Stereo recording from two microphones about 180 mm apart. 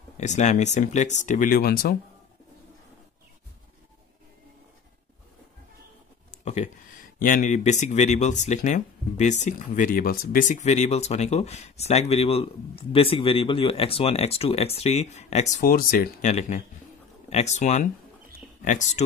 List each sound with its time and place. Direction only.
0.2 s speech: 40° left (ahead or behind)
6.3 s a sound: 40° left (ahead or behind)
7.2 s speech: 50° left (ahead or behind)
15.6 s speech: 55° left (ahead or behind)